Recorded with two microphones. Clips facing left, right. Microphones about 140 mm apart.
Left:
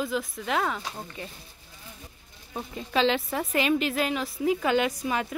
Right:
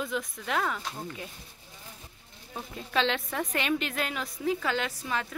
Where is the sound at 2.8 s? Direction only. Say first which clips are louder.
Left 4 dB; centre (ahead or behind).